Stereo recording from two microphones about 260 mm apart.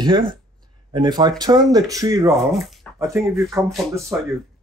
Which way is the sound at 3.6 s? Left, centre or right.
Centre.